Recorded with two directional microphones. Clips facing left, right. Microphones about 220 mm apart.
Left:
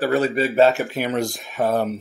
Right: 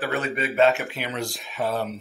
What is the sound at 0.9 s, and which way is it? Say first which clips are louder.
Speech: left 7 dB; 45° left (ahead or behind).